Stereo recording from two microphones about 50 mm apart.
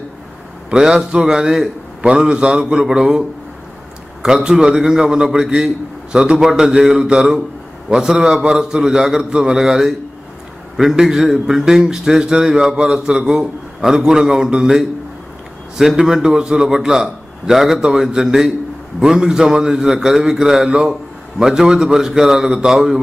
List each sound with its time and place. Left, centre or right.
0.7 s a man's voice: centre
16.0 s speech: centre